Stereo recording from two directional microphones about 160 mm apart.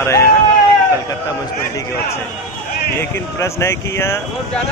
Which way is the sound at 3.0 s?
20° left (ahead or behind).